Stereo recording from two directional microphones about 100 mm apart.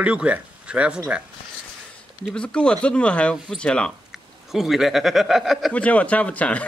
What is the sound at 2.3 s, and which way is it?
Speech, 10° left (ahead or behind).